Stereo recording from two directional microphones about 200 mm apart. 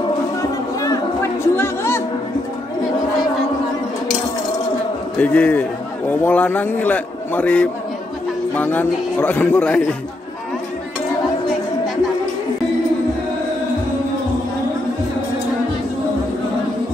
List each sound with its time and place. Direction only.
0.4 s a sound: 15° left (ahead or behind)
1.6 s music: 10° left (ahead or behind)
5.2 s a man's voice: 5° left (ahead or behind)